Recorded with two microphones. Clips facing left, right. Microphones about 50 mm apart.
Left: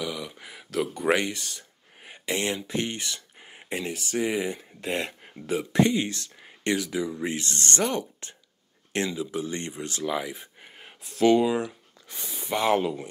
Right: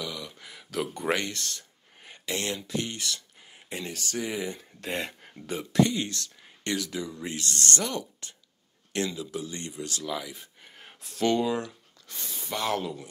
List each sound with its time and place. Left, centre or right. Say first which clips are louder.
0.0 s a sound: left 4 dB; centre
0.7 s speech: left 3 dB; centre
1.0 s speech: left 5 dB; centre; by 3.7 s left
3.7 s speech: left 4 dB; centre
4.8 s speech: left 3 dB; centre
5.7 s speech: left 1 dB; left
11.0 s speech: left 6 dB; centre
11.3 s speech: left 4 dB; centre